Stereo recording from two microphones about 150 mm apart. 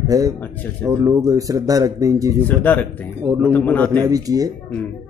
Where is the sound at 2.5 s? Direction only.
10° left (ahead or behind).